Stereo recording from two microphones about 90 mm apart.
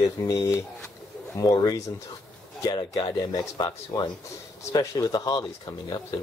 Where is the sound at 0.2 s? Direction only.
40° left (ahead or behind).